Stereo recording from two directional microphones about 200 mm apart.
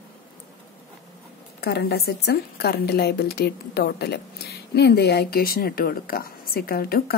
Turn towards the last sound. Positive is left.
turn(degrees=50)  # may be behind; listen again after turning